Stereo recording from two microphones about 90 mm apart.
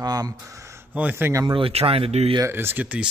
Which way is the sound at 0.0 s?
45° right (ahead or behind).